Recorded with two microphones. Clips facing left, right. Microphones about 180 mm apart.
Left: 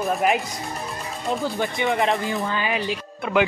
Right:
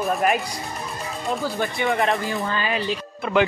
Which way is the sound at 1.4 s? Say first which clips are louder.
Even; 20° left (ahead or behind).